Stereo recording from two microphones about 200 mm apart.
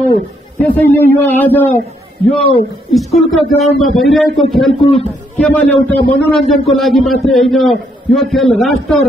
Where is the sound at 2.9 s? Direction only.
Centre (ahead or behind).